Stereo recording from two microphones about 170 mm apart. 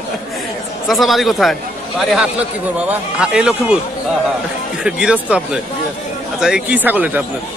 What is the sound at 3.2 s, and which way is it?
Speech, 5° right (ahead or behind).